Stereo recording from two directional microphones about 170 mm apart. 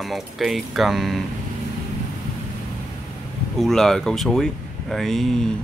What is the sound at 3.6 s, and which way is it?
Speech, centre (ahead or behind).